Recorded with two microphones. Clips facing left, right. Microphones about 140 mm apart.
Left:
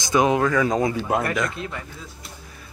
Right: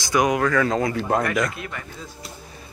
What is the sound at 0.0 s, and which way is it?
Speech, 25° left (ahead or behind).